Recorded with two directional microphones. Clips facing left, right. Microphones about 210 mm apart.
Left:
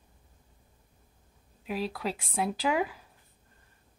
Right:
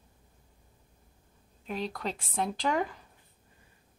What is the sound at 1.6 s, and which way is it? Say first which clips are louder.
Speech: left 2 dB; 5° left (ahead or behind).